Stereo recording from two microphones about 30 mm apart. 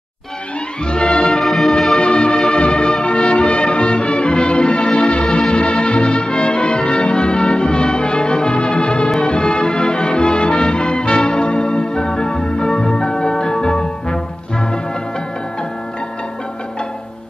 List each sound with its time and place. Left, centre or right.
0.8 s music: left
1.4 s music: centre
2.0 s music: left